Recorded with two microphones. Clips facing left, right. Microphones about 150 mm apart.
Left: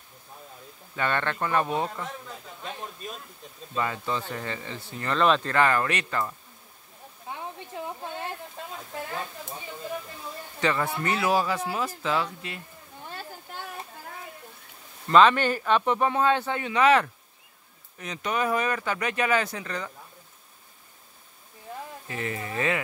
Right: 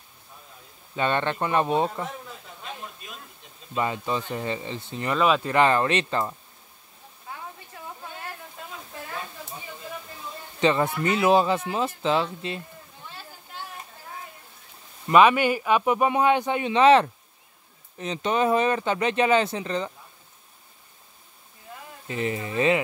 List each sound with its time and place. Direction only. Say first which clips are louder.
0.9 s speech: right 3 dB; 20° right (ahead or behind)
3.7 s speech: right 2 dB; 20° right (ahead or behind)
5.1 s a man's voice: right 1 dB; 5° right (ahead or behind)
5.5 s speech: right 3 dB; 20° right (ahead or behind)
10.6 s a man's voice: right 4 dB; 20° right (ahead or behind)
13.0 s a sound: left 5 dB; 50° left (ahead or behind)
15.0 s a man's voice: right 1 dB; 10° right (ahead or behind)
22.0 s speech: right 6 dB; 20° right (ahead or behind)